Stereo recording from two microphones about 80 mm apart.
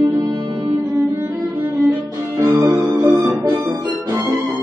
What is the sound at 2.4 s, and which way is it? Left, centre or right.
Music, right.